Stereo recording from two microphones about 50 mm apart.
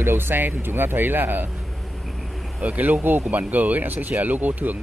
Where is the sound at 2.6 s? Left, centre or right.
Right.